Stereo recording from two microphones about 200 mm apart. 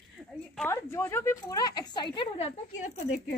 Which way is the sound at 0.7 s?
10° left (ahead or behind).